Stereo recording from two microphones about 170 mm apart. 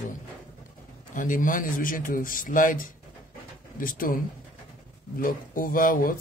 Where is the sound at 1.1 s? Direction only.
50° left (ahead or behind).